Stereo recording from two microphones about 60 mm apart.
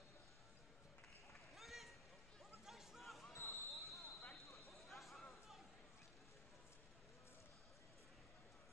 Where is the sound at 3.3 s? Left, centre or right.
Left.